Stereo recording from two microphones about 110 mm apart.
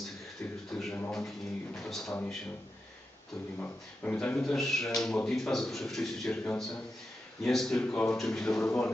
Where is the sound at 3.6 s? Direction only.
15° left (ahead or behind).